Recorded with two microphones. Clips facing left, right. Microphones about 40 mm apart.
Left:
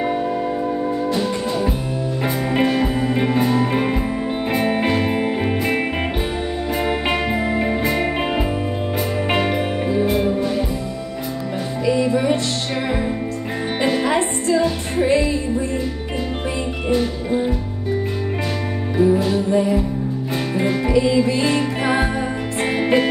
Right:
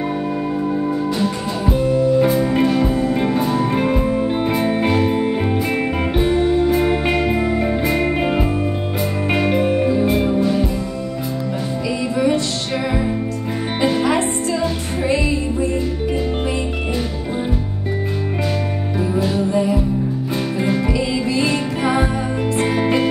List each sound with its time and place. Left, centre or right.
2.1 s music: centre
4.6 s music: centre
6.7 s music: centre
9.6 s music: centre
13.8 s music: centre
20.9 s music: left
22.8 s music: centre